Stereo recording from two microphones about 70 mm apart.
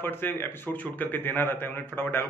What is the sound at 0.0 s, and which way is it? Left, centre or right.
Speech, left.